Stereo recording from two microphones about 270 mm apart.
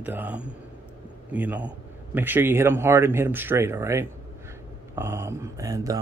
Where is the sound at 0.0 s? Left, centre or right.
Centre.